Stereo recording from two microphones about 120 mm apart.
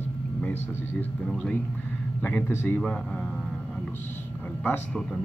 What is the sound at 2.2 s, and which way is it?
Speech, 15° left (ahead or behind).